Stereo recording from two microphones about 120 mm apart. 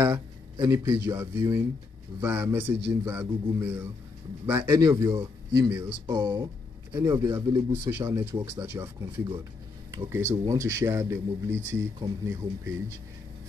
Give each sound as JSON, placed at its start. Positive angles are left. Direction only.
{"t": 0.7, "sound": "speech", "side_deg": -20}
{"t": 5.6, "sound": "speech", "side_deg": -20}
{"t": 6.2, "sound": "a sound", "side_deg": -40}
{"t": 7.1, "sound": "speech", "side_deg": -25}